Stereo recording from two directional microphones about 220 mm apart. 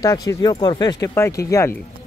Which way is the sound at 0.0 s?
15° left (ahead or behind).